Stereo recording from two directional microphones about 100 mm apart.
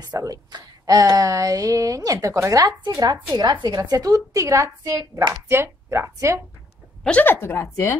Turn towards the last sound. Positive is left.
turn(degrees=25)  # may be behind; listen again after turning